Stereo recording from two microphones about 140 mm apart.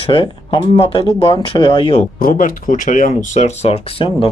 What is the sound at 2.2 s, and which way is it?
Speech, 75° left (ahead or behind).